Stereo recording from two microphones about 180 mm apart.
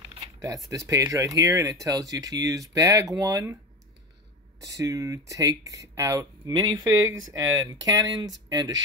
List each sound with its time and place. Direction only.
0.4 s speech: 20° right (ahead or behind)
4.7 s speech: 20° right (ahead or behind)